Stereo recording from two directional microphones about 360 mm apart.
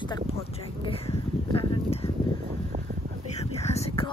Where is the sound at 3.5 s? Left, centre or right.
Centre.